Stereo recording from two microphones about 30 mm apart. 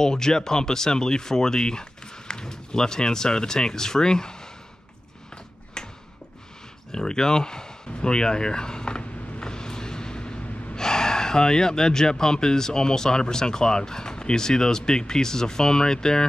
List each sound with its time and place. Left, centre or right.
0.0 s speech: left
5.8 s a sound: left
6.9 s speech: left
8.9 s creak: left
10.8 s speech: left